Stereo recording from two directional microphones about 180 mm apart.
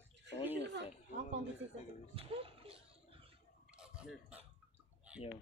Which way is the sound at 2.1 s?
30° right (ahead or behind).